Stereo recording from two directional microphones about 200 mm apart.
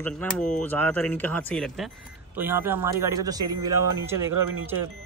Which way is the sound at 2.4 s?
10° right (ahead or behind).